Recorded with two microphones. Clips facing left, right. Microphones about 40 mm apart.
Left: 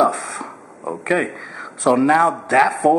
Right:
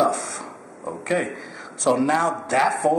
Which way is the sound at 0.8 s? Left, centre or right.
Left.